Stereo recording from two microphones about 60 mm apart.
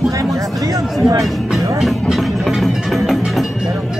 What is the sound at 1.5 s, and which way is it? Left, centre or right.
Music, centre.